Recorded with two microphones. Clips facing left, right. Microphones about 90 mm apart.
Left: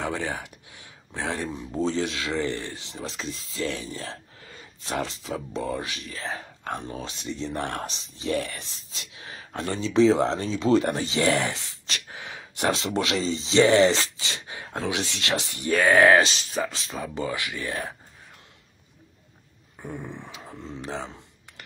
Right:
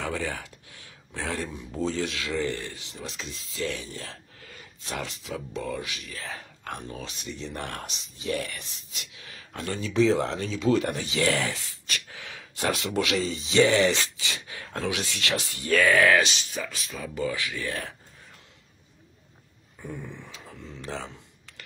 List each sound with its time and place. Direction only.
0.0 s speech: 20° left (ahead or behind)
9.5 s speech: 40° left (ahead or behind)
9.8 s speech: 25° left (ahead or behind)
11.1 s speech: 20° left (ahead or behind)
19.8 s speech: 30° left (ahead or behind)
20.4 s computer keyboard: 20° left (ahead or behind)